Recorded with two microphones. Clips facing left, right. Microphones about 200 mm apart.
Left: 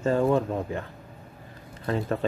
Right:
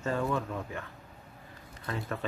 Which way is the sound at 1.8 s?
35° left (ahead or behind).